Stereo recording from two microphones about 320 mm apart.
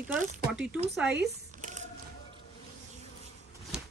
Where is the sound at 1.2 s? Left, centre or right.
Right.